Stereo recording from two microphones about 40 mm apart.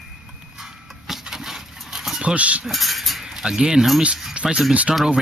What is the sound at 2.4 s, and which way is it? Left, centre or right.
Speech, right.